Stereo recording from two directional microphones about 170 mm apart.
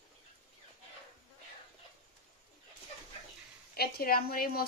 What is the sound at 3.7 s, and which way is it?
Speech, 65° left (ahead or behind).